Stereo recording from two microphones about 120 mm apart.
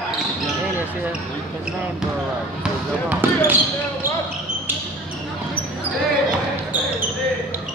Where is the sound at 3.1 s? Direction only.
15° right (ahead or behind).